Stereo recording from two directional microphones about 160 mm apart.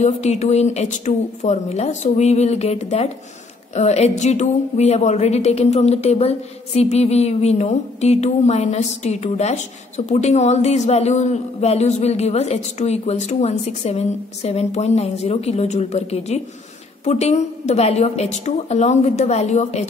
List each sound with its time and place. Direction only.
0.0 s speech: 45° left (ahead or behind)